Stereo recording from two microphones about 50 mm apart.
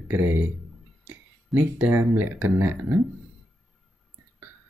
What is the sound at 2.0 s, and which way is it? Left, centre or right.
Speech, right.